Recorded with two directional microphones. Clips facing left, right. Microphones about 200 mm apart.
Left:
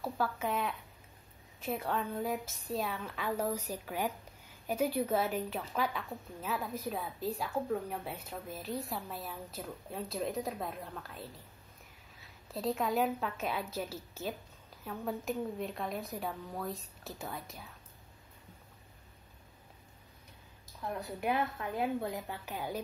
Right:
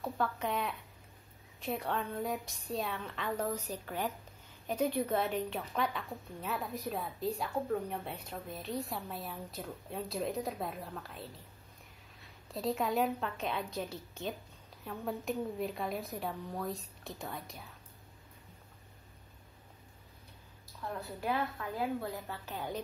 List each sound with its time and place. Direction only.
0.0 s speech: 5° left (ahead or behind)
20.8 s a woman's voice: 20° left (ahead or behind)